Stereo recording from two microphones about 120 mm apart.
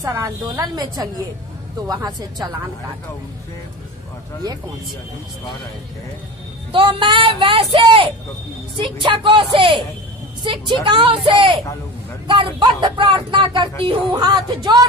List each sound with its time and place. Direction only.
0.0 s speech: 25° right (ahead or behind)
6.7 s speech: 45° right (ahead or behind)